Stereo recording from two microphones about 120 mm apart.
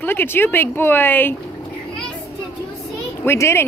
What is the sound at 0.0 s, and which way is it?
Speech, 20° left (ahead or behind).